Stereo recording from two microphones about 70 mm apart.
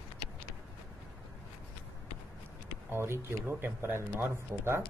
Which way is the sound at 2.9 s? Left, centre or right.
Right.